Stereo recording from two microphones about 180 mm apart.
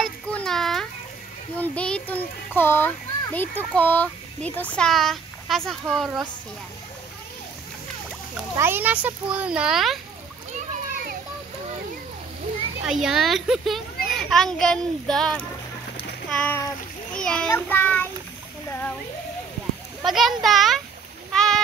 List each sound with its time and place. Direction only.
0.0 s a sound: 5° left (ahead or behind)
1.6 s a child's voice: 5° left (ahead or behind)
8.5 s a child's voice: 10° right (ahead or behind)
12.8 s a child's voice: 5° right (ahead or behind)
17.1 s a sound: 5° left (ahead or behind)
17.5 s child singing: 10° left (ahead or behind)
18.7 s a sound: 10° left (ahead or behind)
20.0 s a child's voice: centre (ahead or behind)
21.3 s rowboat: 5° left (ahead or behind)